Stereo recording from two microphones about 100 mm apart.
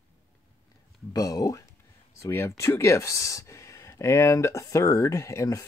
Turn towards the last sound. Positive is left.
turn(degrees=30)  # may be behind; listen again after turning